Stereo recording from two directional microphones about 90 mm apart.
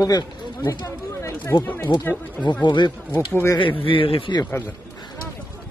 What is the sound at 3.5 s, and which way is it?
Speech, 75° left (ahead or behind).